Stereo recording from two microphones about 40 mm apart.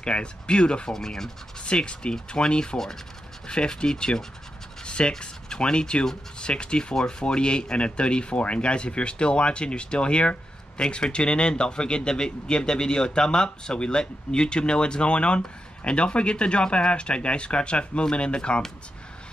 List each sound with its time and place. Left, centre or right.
0.0 s a man's voice: left
0.9 s speech: centre
1.7 s a man's voice: left
4.8 s scratch: left
5.2 s a man's voice: left